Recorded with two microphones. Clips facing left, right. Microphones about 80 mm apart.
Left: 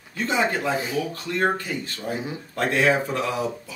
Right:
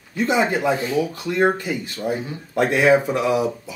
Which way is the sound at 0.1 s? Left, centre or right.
Centre.